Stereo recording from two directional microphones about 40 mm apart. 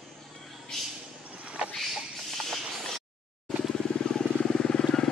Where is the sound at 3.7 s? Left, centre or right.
Centre.